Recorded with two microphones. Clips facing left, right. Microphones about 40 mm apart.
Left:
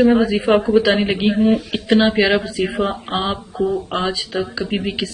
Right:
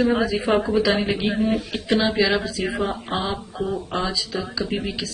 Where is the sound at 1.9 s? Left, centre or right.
Left.